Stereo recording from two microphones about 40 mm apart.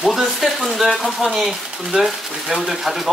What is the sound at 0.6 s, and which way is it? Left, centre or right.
Speech, centre.